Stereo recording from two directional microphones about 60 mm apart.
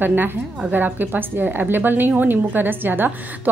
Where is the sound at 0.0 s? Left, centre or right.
Right.